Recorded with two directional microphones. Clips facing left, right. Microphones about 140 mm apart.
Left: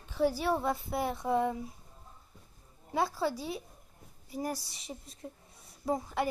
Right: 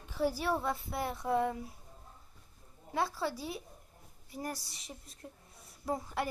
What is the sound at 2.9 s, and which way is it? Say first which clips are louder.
A woman's voice: left 3 dB; centre (ahead or behind).